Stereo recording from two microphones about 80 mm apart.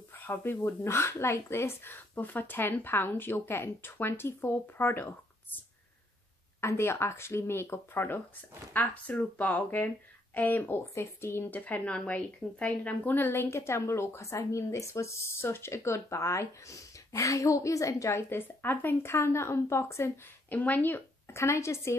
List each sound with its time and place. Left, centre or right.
0.1 s speech: left
6.6 s speech: left
8.7 s speech: centre; by 20.1 s left
20.4 s speech: left